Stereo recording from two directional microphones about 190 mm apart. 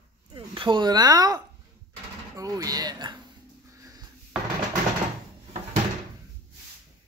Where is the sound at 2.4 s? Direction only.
20° right (ahead or behind).